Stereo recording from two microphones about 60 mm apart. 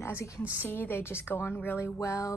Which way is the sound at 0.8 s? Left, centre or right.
Left.